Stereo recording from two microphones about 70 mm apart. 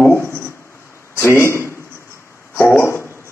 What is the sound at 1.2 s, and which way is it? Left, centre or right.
Speech, left.